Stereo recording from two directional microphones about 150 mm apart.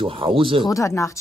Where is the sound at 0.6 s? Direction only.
20° left (ahead or behind).